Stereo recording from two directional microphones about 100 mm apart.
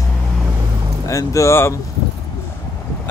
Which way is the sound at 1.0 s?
30° left (ahead or behind).